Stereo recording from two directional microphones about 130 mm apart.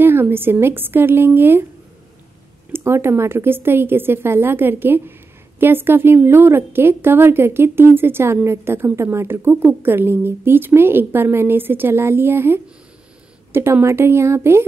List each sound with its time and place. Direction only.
0.0 s speech: 15° right (ahead or behind)
2.7 s speech: 20° right (ahead or behind)